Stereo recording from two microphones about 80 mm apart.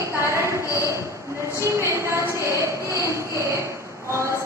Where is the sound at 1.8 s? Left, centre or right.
Right.